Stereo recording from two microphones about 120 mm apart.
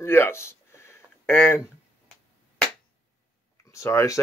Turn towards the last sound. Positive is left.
turn(degrees=25)  # may be behind; listen again after turning